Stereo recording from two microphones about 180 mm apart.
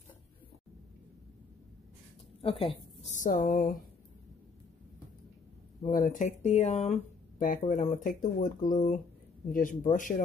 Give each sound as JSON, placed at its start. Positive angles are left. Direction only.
{"t": 3.1, "sound": "speech", "side_deg": 45}
{"t": 5.9, "sound": "speech", "side_deg": 50}